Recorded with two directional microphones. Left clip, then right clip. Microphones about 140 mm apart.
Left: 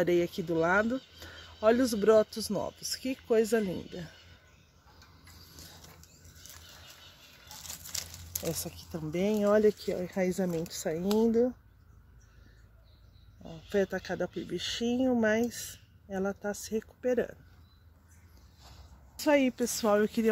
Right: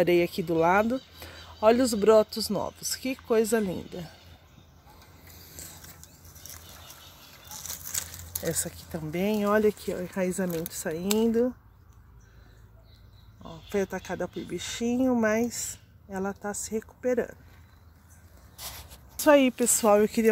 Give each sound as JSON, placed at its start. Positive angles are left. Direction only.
{"t": 0.0, "sound": "speech", "side_deg": 0}
{"t": 8.5, "sound": "speech", "side_deg": 0}
{"t": 13.7, "sound": "speech", "side_deg": 25}
{"t": 19.1, "sound": "speech", "side_deg": 0}